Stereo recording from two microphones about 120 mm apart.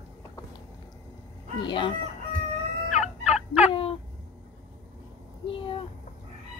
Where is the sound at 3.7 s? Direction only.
50° left (ahead or behind).